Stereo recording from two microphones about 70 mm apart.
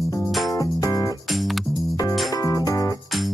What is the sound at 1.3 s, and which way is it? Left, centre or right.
Music, centre.